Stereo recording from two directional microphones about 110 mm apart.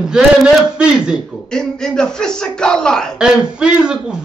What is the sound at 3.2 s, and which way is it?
Speech, 10° right (ahead or behind).